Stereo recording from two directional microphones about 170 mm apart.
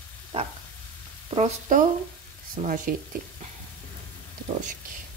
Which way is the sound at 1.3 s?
45° right (ahead or behind).